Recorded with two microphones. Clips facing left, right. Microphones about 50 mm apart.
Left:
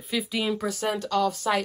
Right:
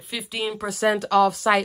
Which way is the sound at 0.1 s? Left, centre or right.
Centre.